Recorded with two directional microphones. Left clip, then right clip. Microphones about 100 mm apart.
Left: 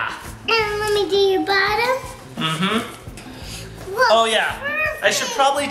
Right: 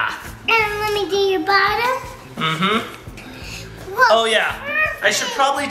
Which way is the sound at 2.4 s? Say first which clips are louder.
Right 3 dB; 15° right (ahead or behind).